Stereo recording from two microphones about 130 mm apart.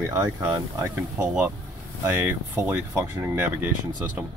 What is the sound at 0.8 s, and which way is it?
Speech, 20° right (ahead or behind).